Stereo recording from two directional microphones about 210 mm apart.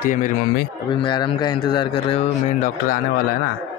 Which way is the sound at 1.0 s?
20° left (ahead or behind).